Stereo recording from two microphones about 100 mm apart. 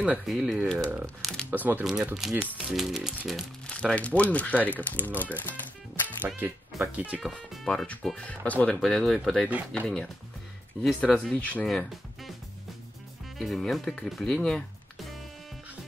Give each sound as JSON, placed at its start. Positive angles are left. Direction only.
{"t": 0.3, "sound": "speech", "side_deg": 0}
{"t": 0.7, "sound": "speech", "side_deg": 10}
{"t": 1.2, "sound": "shuffling cards", "side_deg": 5}
{"t": 1.5, "sound": "speech", "side_deg": -20}
{"t": 2.1, "sound": "speech", "side_deg": -5}
{"t": 3.6, "sound": "speech", "side_deg": 10}
{"t": 5.4, "sound": "music", "side_deg": 15}
{"t": 6.2, "sound": "speech", "side_deg": -20}
{"t": 7.2, "sound": "speech", "side_deg": 0}
{"t": 8.8, "sound": "speech", "side_deg": 0}
{"t": 11.6, "sound": "speech", "side_deg": 5}
{"t": 13.4, "sound": "speech", "side_deg": 0}